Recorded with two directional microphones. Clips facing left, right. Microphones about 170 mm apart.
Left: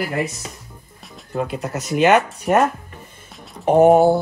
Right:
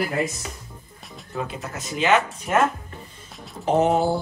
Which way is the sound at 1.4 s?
65° left (ahead or behind).